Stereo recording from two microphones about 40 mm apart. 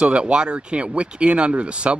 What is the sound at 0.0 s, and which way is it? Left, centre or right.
Speech, right.